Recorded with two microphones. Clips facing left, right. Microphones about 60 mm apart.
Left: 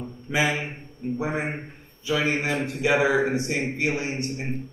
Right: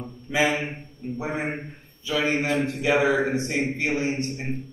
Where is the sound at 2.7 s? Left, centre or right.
Centre.